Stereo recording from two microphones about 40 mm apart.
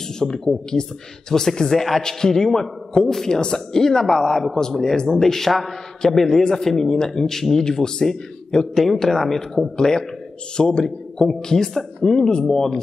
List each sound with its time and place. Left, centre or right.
0.2 s a man's voice: centre